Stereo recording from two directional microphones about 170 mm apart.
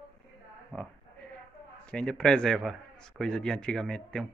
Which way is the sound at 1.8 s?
5° left (ahead or behind).